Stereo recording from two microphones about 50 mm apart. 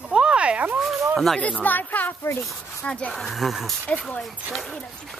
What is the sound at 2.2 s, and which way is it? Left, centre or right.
Speech, left.